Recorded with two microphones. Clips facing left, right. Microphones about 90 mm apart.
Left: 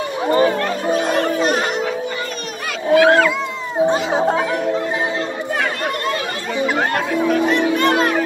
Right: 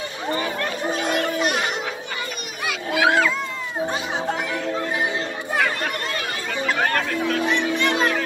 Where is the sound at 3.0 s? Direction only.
10° right (ahead or behind).